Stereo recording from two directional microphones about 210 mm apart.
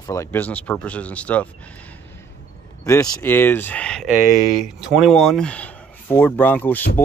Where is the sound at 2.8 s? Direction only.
15° left (ahead or behind).